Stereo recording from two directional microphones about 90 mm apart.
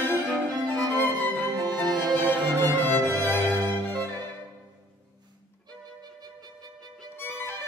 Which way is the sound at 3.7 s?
25° left (ahead or behind).